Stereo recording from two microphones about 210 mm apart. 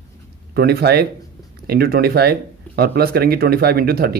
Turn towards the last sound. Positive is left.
turn(degrees=-45)  # may be behind; listen again after turning